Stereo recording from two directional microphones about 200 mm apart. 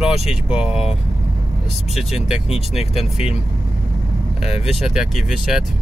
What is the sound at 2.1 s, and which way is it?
Speech, 5° right (ahead or behind).